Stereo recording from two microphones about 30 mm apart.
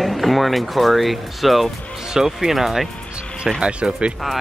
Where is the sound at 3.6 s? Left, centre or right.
Right.